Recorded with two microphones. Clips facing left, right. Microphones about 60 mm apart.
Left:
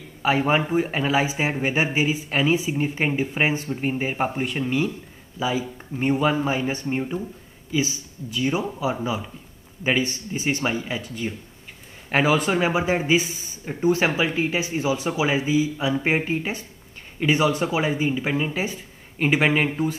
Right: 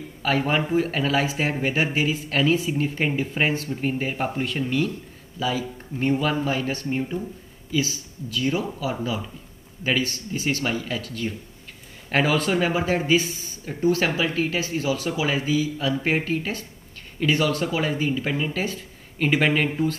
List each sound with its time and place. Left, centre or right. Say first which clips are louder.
0.2 s speech: left 2 dB; centre